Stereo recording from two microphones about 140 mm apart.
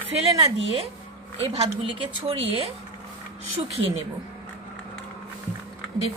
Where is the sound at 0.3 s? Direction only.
30° right (ahead or behind).